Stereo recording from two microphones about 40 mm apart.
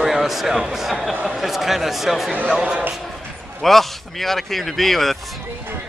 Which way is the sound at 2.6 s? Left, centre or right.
Right.